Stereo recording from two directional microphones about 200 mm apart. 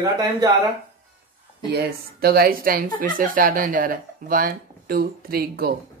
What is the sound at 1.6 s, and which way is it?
Speech, 50° right (ahead or behind).